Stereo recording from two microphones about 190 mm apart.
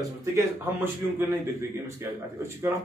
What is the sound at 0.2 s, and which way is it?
Speech, 15° right (ahead or behind).